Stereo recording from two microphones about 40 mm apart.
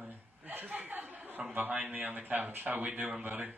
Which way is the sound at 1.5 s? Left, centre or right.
Right.